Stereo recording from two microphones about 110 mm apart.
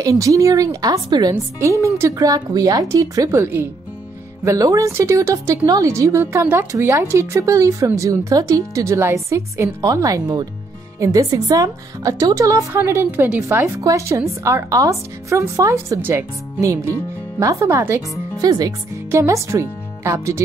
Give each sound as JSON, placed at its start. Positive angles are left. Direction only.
{"t": 0.0, "sound": "a woman's voice", "side_deg": -30}
{"t": 18.4, "sound": "a woman's voice", "side_deg": -35}